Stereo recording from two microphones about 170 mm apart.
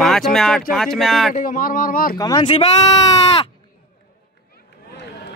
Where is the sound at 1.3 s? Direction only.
50° left (ahead or behind).